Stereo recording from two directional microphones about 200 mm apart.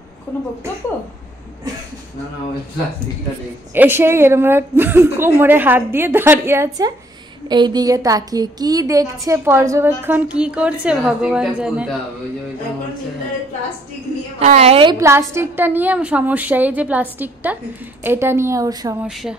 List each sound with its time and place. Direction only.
3.7 s a woman's voice: 10° right (ahead or behind)
14.4 s a woman's voice: 30° right (ahead or behind)
15.0 s a woman's voice: 15° right (ahead or behind)
19.0 s speech: 5° right (ahead or behind)